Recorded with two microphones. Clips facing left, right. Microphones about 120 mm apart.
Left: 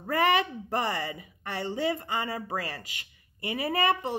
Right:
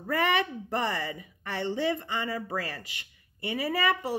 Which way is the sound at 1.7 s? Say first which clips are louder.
Even; 35° left (ahead or behind).